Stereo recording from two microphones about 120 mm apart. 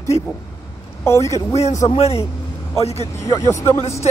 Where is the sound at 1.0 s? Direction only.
25° left (ahead or behind).